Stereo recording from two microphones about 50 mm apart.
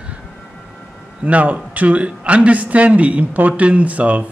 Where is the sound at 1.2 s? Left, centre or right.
Right.